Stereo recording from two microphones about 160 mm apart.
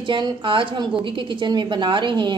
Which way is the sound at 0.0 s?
30° right (ahead or behind).